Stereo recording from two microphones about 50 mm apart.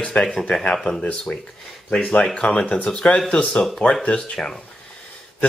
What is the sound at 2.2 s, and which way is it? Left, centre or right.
Speech, centre.